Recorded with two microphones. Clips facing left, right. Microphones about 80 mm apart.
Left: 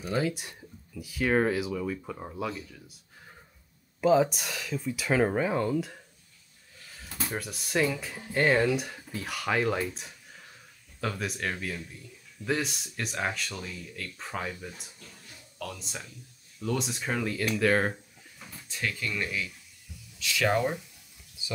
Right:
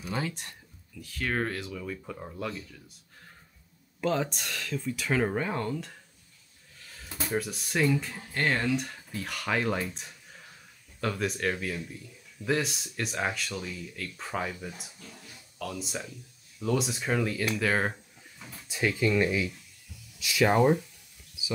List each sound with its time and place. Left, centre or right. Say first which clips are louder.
0.1 s speech: left 5 dB; centre
4.0 s speech: left 6 dB; centre
6.9 s a sound: right 1 dB; centre
7.2 s speech: right 6 dB; centre
18.7 s speech: right 7 dB; centre